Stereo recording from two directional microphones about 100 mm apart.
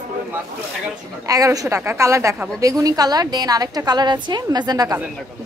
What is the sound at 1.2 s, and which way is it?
A woman's voice, 35° right (ahead or behind).